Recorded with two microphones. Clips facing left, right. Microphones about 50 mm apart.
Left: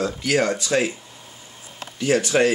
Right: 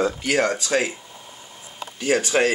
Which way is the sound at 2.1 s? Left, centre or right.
Centre.